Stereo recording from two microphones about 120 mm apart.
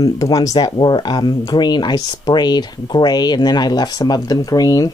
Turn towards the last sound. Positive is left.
turn(degrees=30)  # may be behind; listen again after turning